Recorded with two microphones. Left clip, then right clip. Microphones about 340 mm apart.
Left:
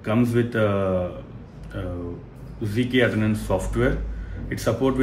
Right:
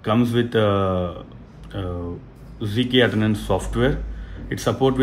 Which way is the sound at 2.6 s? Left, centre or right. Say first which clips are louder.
Right 3 dB; right.